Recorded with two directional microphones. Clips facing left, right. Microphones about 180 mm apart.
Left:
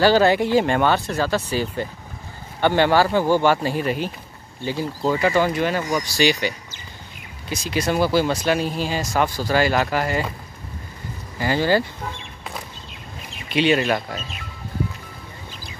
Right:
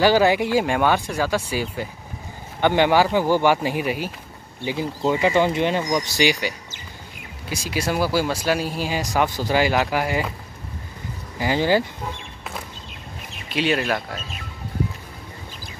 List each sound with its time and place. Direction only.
0.0 s speech: 10° right (ahead or behind)
11.3 s speech: 15° right (ahead or behind)
13.5 s speech: centre (ahead or behind)